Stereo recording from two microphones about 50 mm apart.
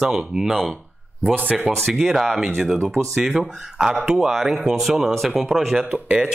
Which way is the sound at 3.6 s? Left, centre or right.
Centre.